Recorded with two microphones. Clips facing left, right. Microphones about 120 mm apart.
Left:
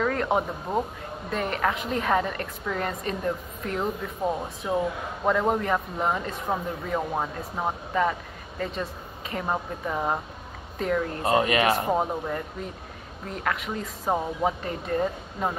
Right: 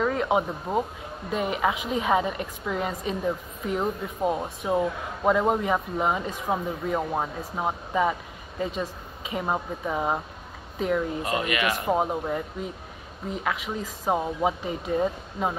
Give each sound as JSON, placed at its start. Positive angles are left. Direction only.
{"t": 0.0, "sound": "a woman's voice", "side_deg": -5}
{"t": 11.2, "sound": "speech", "side_deg": 35}
{"t": 11.9, "sound": "a woman's voice", "side_deg": -10}